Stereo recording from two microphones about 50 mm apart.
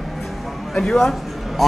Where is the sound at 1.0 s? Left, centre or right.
Centre.